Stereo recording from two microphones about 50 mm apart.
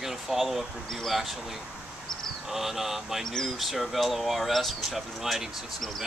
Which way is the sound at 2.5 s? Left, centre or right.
Centre.